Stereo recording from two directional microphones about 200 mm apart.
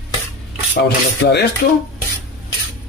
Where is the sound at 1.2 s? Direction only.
55° left (ahead or behind).